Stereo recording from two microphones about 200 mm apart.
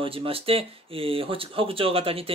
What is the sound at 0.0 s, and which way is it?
Speech, 25° right (ahead or behind).